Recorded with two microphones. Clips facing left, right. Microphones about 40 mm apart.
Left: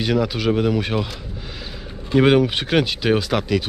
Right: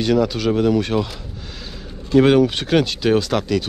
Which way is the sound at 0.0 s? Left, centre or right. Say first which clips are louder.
Right 2 dB; centre.